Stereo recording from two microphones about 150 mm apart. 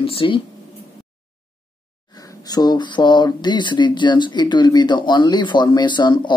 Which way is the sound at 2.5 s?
25° left (ahead or behind).